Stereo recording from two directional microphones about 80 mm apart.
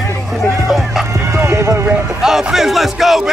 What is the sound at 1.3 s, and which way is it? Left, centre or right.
Horse, right.